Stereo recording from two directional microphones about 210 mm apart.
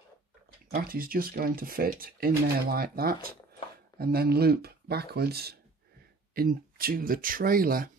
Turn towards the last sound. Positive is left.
turn(degrees=-45)  # may be behind; listen again after turning